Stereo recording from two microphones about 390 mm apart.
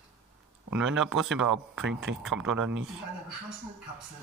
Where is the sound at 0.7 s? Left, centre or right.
Centre.